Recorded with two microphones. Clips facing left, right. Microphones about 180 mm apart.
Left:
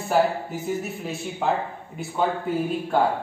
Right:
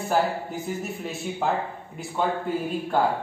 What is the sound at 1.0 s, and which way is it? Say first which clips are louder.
A man's voice: left 1 dB; centre (ahead or behind).